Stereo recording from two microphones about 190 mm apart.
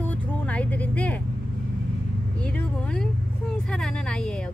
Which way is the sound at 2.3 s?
5° left (ahead or behind).